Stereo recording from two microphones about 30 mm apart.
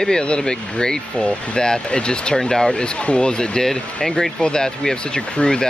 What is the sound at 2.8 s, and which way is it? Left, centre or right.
Speech, left.